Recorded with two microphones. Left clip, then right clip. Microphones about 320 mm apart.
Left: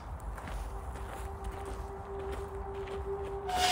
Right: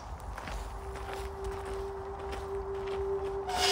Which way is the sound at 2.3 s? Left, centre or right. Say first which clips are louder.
Right 4 dB; centre.